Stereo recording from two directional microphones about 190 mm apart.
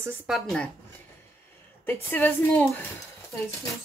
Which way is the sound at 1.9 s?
10° left (ahead or behind).